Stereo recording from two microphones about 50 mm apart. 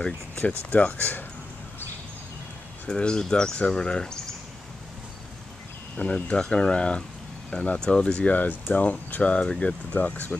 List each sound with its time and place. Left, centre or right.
0.0 s speech: left
0.7 s speech: left
2.9 s speech: centre
5.9 s speech: centre
8.3 s speech: left
9.9 s speech: left